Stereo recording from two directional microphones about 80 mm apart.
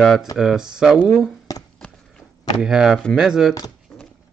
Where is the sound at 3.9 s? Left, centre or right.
Centre.